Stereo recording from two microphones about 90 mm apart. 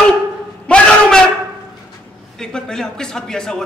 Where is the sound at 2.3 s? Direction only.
5° left (ahead or behind).